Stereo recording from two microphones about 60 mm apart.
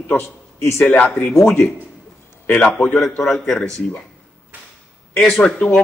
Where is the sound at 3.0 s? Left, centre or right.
Centre.